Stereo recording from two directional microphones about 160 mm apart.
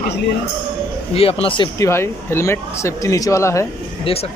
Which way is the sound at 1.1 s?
35° left (ahead or behind).